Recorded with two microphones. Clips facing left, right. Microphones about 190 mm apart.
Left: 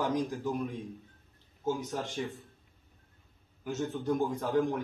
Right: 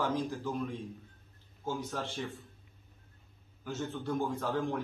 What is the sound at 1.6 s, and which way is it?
Speech, 15° left (ahead or behind).